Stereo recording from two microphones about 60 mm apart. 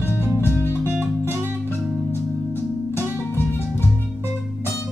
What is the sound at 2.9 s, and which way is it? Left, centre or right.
Music, left.